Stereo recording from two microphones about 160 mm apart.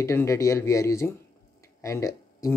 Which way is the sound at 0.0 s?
20° left (ahead or behind).